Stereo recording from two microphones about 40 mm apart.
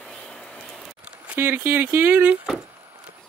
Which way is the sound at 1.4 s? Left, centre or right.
Right.